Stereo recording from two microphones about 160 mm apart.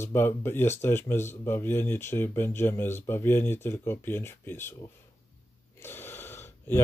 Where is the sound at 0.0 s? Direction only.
15° left (ahead or behind).